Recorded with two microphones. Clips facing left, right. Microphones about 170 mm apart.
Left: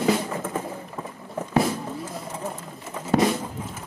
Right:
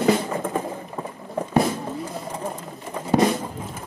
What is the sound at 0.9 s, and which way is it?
Run, 30° right (ahead or behind).